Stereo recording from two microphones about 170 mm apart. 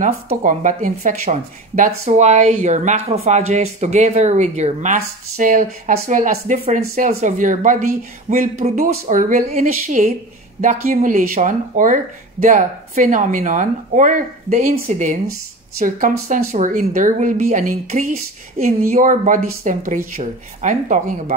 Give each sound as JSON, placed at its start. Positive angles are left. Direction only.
{"t": 0.0, "sound": "speech", "side_deg": -50}